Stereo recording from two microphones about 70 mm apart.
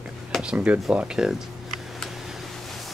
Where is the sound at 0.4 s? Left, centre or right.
Centre.